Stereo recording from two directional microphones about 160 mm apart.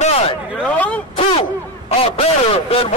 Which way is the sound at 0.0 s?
40° left (ahead or behind).